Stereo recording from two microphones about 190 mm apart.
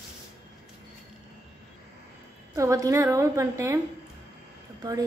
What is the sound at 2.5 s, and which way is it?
A woman's voice, 15° right (ahead or behind).